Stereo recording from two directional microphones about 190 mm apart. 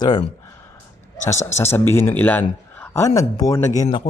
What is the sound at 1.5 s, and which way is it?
A man's voice, 15° left (ahead or behind).